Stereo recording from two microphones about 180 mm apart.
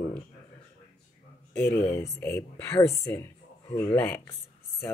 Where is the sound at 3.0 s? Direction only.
15° left (ahead or behind).